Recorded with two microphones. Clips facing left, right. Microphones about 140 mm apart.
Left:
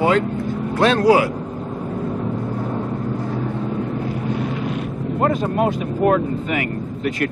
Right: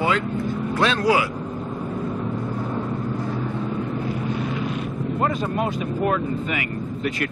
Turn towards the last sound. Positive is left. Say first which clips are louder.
# left 3 dB
turn(degrees=45)  # may be behind; listen again after turning